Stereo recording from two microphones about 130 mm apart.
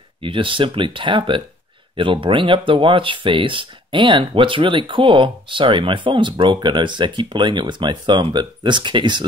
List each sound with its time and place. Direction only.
0.2 s speech: 40° right (ahead or behind)